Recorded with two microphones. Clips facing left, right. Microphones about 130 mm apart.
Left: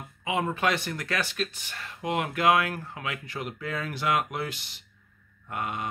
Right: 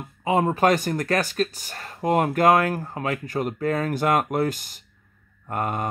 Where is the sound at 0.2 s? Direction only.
40° right (ahead or behind).